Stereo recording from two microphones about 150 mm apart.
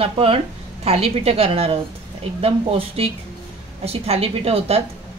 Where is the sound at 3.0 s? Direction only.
40° right (ahead or behind).